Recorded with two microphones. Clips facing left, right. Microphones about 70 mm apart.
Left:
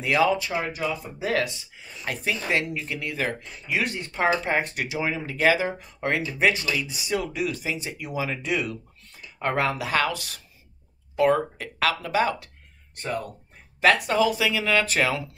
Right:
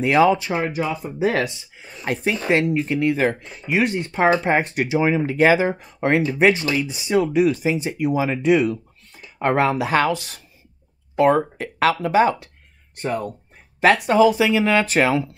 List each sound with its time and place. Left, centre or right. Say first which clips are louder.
0.0 s speech: right 6 dB; right